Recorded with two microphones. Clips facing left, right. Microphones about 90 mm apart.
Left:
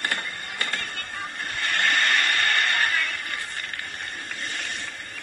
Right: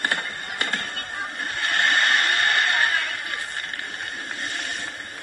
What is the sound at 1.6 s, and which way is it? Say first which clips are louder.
Vehicle: right 2 dB; 30° right (ahead or behind).